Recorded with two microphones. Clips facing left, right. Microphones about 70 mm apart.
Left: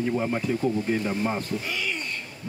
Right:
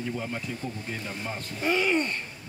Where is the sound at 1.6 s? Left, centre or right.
Right.